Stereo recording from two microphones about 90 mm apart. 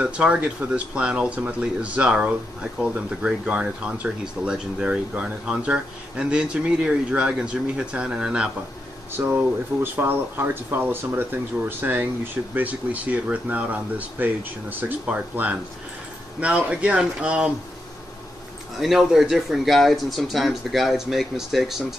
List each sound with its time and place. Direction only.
0.0 s speech: 15° right (ahead or behind)
9.2 s speech: 25° right (ahead or behind)
18.8 s speech: centre (ahead or behind)